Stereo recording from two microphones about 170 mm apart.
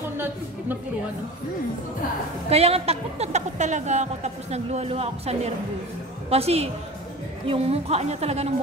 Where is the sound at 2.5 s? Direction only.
35° right (ahead or behind).